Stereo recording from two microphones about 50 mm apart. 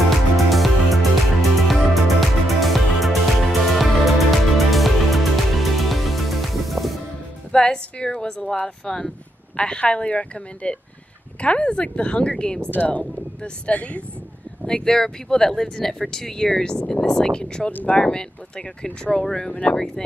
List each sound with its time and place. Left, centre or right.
0.5 s music: centre
7.5 s a woman's voice: centre
12.7 s speech: left
14.7 s speech: centre
17.6 s speech: left
18.0 s speech: centre
19.5 s speech: left